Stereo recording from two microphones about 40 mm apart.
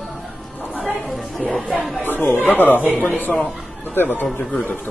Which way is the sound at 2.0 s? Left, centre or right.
Left.